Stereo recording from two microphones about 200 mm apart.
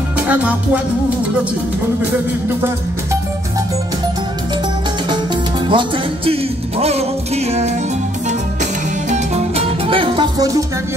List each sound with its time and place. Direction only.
0.3 s music: 5° right (ahead or behind)
5.7 s music: 25° right (ahead or behind)
9.1 s music: 30° right (ahead or behind)